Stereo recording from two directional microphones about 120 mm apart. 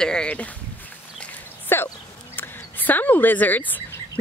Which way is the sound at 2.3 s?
15° left (ahead or behind).